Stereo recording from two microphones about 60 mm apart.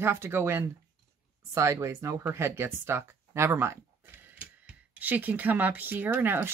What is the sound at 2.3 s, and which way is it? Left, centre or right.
Speech, right.